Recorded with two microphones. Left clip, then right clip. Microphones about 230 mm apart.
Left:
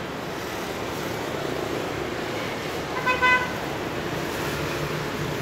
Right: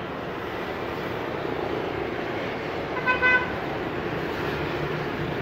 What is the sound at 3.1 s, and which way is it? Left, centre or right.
Vehicle, left.